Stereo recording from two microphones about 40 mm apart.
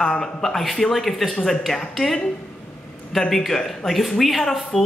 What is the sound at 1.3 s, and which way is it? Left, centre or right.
A man's voice, centre.